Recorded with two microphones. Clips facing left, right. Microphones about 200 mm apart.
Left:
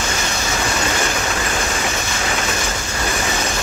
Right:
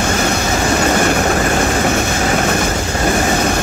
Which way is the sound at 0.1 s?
55° right (ahead or behind).